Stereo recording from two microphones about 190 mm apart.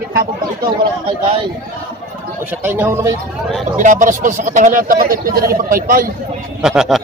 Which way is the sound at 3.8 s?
45° right (ahead or behind).